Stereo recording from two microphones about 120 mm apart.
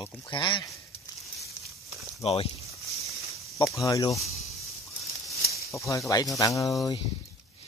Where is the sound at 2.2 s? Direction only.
55° left (ahead or behind).